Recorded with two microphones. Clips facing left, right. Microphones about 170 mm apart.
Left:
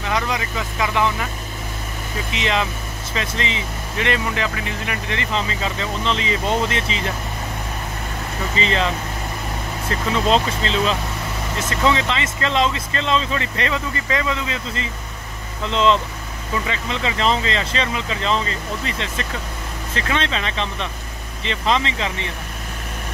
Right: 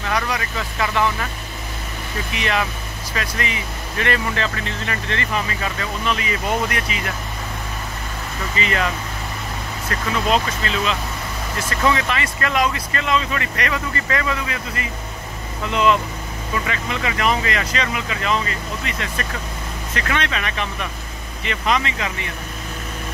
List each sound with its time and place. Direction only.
0.0 s speech: 20° left (ahead or behind)
2.3 s speech: 20° left (ahead or behind)
8.5 s speech: 25° left (ahead or behind)